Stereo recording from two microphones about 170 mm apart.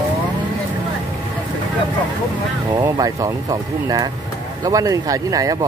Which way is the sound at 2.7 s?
25° right (ahead or behind).